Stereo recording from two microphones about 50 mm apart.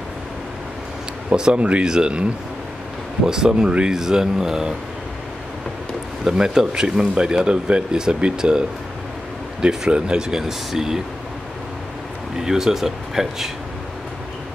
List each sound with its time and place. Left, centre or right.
1.3 s speech: centre
3.3 s speech: centre
6.2 s speech: centre
12.4 s speech: centre